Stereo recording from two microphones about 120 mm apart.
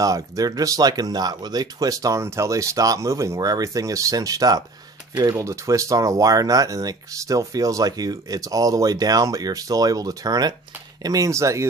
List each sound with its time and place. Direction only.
0.0 s speech: 30° right (ahead or behind)